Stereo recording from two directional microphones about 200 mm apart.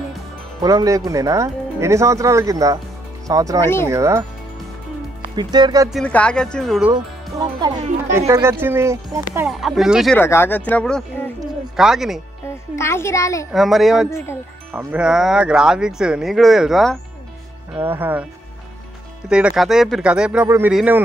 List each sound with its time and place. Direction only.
0.6 s speech: 20° right (ahead or behind)
3.6 s speech: 10° left (ahead or behind)
3.9 s speech: 15° right (ahead or behind)
5.3 s speech: 20° right (ahead or behind)
5.9 s speech: 5° left (ahead or behind)
6.9 s speech: 20° right (ahead or behind); by 10.1 s centre (ahead or behind)
10.1 s speech: 10° left (ahead or behind)
12.7 s speech: 15° left (ahead or behind)
13.5 s speech: centre (ahead or behind)
14.1 s speech: 10° left (ahead or behind)
14.7 s speech: 10° right (ahead or behind)
17.7 s speech: 10° right (ahead or behind)
19.2 s speech: 5° right (ahead or behind)